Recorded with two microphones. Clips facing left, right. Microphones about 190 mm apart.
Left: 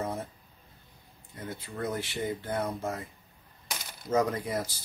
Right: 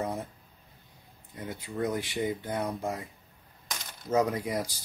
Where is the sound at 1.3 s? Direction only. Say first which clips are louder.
Right 2 dB; 15° right (ahead or behind).